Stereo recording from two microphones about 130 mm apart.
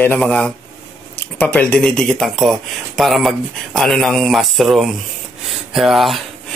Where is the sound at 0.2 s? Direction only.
5° left (ahead or behind).